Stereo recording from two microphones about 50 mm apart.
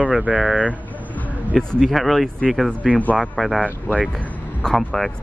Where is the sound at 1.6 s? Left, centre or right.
Centre.